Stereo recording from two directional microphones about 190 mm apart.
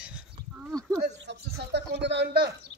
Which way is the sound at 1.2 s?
60° right (ahead or behind).